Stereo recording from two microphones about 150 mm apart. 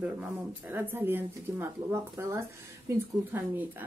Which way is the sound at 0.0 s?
10° right (ahead or behind).